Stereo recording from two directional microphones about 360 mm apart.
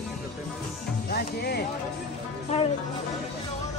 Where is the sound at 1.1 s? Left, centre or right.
Left.